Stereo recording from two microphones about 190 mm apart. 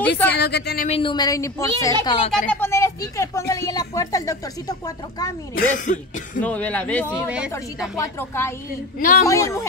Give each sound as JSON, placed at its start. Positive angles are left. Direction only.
{"t": 0.4, "sound": "speech", "side_deg": 60}
{"t": 0.8, "sound": "a woman's voice", "side_deg": 30}
{"t": 2.0, "sound": "a woman's voice", "side_deg": 30}
{"t": 2.5, "sound": "speech", "side_deg": 10}
{"t": 5.5, "sound": "speech", "side_deg": 40}
{"t": 6.4, "sound": "speech", "side_deg": 5}
{"t": 7.2, "sound": "speech", "side_deg": -5}
{"t": 8.0, "sound": "speech", "side_deg": 15}